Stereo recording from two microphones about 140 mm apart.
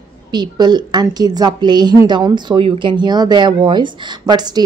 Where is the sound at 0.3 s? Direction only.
30° right (ahead or behind).